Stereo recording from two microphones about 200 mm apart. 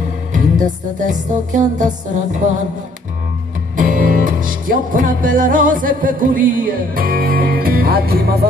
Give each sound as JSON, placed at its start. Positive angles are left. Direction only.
{"t": 0.3, "sound": "music", "side_deg": -40}
{"t": 3.7, "sound": "music", "side_deg": -40}